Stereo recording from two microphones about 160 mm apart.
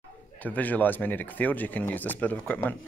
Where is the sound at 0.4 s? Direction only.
10° left (ahead or behind).